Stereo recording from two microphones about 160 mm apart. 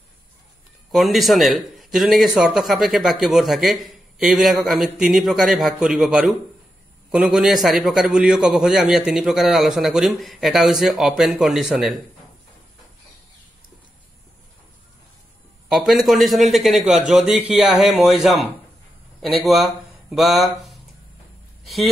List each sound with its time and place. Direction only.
0.9 s speech: centre (ahead or behind)
15.7 s speech: centre (ahead or behind)